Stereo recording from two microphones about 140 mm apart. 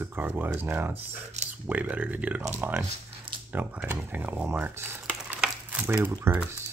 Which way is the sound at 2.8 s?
40° right (ahead or behind).